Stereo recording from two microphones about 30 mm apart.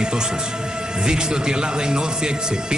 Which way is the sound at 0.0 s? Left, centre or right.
Right.